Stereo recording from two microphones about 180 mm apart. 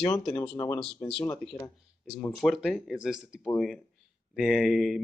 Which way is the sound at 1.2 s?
15° left (ahead or behind).